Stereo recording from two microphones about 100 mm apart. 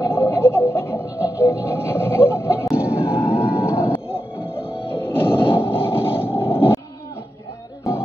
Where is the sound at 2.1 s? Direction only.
25° left (ahead or behind).